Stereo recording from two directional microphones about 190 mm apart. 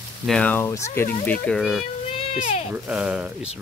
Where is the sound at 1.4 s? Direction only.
Centre (ahead or behind).